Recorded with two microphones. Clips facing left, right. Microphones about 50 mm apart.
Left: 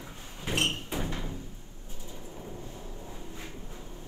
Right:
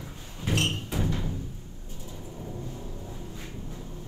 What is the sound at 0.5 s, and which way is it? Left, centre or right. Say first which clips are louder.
Music: right 2 dB; left.